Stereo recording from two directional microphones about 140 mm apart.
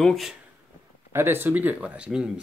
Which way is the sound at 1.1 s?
15° right (ahead or behind).